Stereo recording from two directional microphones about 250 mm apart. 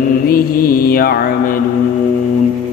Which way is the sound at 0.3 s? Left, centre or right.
Left.